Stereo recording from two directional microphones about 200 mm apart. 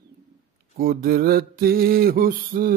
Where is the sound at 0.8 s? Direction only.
45° right (ahead or behind).